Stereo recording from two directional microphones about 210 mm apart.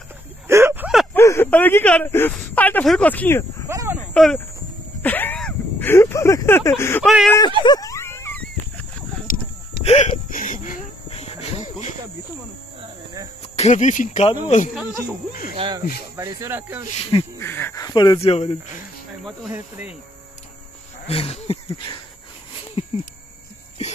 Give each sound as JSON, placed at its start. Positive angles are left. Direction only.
{"t": 0.5, "sound": "a sound", "side_deg": -10}
{"t": 1.1, "sound": "speech", "side_deg": 10}
{"t": 3.6, "sound": "a sound", "side_deg": -10}
{"t": 4.1, "sound": "speech", "side_deg": 5}
{"t": 5.0, "sound": "a sound", "side_deg": 10}
{"t": 6.8, "sound": "speech", "side_deg": 10}
{"t": 7.1, "sound": "speech", "side_deg": 0}
{"t": 7.6, "sound": "dog", "side_deg": 15}
{"t": 9.3, "sound": "a sound", "side_deg": 40}
{"t": 13.6, "sound": "speech", "side_deg": 35}
{"t": 15.5, "sound": "speech", "side_deg": -25}
{"t": 16.2, "sound": "speech", "side_deg": -10}
{"t": 17.4, "sound": "speech", "side_deg": 10}
{"t": 21.1, "sound": "speech", "side_deg": 30}